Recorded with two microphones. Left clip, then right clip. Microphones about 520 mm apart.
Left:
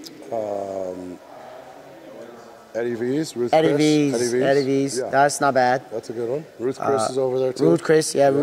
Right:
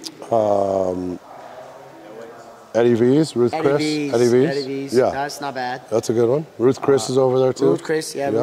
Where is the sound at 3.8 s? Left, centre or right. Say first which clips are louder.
Right 1 dB; left.